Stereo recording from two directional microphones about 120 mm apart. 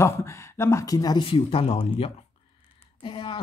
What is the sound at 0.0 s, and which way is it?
Speech, 25° left (ahead or behind).